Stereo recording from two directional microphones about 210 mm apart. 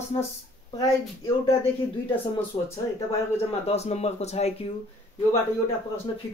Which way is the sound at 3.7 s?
30° left (ahead or behind).